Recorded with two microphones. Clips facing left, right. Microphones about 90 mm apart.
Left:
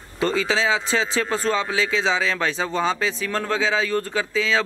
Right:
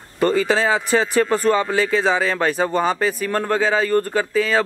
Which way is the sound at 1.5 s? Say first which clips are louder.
Right 5 dB; 55° right (ahead or behind).